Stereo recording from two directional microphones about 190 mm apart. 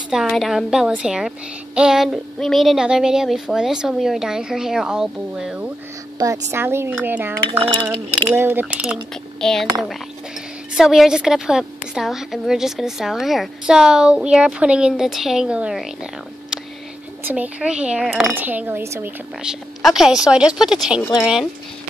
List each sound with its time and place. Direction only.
0.1 s a woman's voice: centre (ahead or behind)
6.1 s a woman's voice: 20° right (ahead or behind)
6.5 s cutlery: 15° right (ahead or behind)
9.4 s a woman's voice: centre (ahead or behind)
10.8 s a woman's voice: 5° right (ahead or behind)